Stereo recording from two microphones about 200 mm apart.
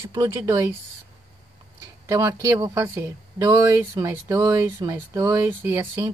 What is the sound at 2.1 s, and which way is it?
Speech, 15° right (ahead or behind).